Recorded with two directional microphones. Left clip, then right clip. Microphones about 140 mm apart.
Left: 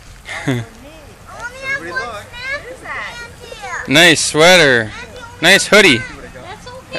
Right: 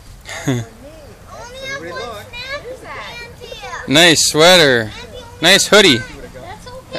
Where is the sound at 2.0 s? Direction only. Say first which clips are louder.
Left 3 dB; 25° right (ahead or behind).